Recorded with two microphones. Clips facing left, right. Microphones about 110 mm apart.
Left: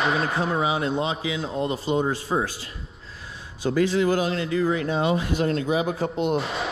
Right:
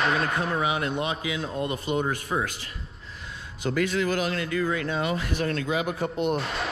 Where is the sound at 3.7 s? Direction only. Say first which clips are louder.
Left 4 dB; 25° left (ahead or behind).